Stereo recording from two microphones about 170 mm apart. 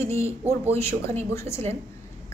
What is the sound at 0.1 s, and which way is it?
Speech, 15° left (ahead or behind).